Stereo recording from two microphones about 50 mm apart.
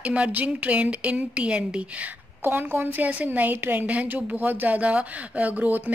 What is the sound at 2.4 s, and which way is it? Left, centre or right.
A woman's voice, right.